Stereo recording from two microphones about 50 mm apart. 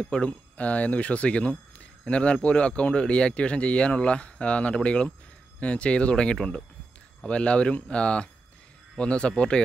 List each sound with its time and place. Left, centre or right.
0.0 s speech: left